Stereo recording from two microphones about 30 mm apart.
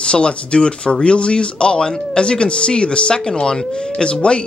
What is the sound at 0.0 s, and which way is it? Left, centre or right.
Speech, left.